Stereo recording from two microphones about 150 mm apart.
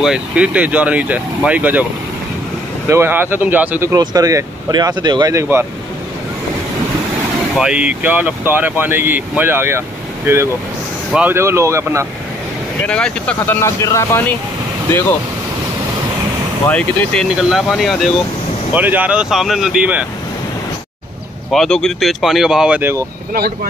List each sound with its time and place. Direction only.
0.0 s speech: 5° right (ahead or behind)
2.9 s speech: 15° right (ahead or behind)
3.9 s speech: 25° right (ahead or behind)
7.5 s speech: 5° right (ahead or behind)
12.8 s speech: 5° left (ahead or behind)
16.6 s speech: 5° left (ahead or behind)
18.8 s speech: 10° right (ahead or behind)
21.5 s speech: 5° left (ahead or behind); by 23.0 s 15° right (ahead or behind)
23.3 s speech: 90° right